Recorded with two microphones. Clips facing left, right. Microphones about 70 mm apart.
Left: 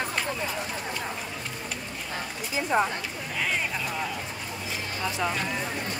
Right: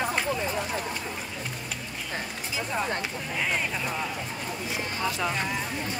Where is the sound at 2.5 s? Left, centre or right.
Left.